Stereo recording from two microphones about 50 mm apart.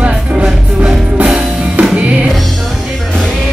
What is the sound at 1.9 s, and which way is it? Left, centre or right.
Music, right.